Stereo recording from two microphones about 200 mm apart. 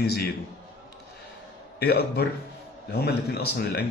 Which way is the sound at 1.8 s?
50° left (ahead or behind).